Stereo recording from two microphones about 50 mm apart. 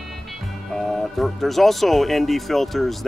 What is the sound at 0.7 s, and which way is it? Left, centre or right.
Speech, centre.